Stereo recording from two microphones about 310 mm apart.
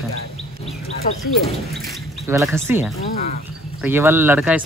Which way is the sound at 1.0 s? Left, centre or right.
Left.